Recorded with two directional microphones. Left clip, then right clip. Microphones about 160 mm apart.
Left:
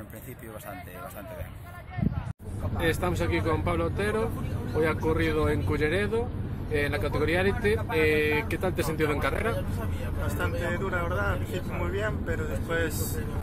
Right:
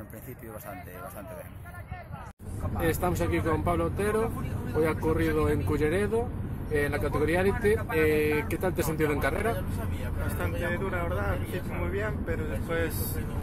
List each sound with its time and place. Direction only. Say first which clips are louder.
2.8 s speech: even; 10° right (ahead or behind)